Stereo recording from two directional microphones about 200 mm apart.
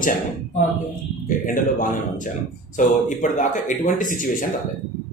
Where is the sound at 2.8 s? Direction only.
40° left (ahead or behind).